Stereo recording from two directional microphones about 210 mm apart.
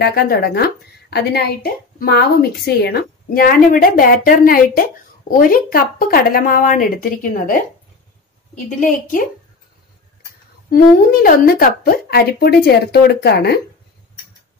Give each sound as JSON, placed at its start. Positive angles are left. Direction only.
{"t": 0.0, "sound": "a woman's voice", "side_deg": 50}
{"t": 8.6, "sound": "a woman's voice", "side_deg": 40}
{"t": 10.7, "sound": "a woman's voice", "side_deg": 45}